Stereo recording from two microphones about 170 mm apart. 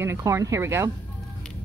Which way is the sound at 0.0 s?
15° right (ahead or behind).